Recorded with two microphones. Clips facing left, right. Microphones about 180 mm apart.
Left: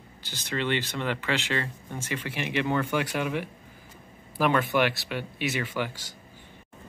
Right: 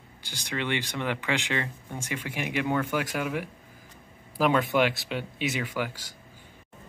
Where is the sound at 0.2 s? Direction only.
15° right (ahead or behind).